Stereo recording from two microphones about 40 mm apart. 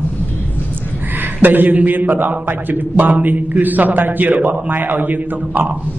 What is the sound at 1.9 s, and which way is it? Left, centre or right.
A man's voice, right.